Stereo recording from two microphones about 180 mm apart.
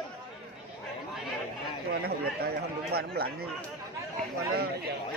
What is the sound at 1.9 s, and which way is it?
Chatter, 60° right (ahead or behind).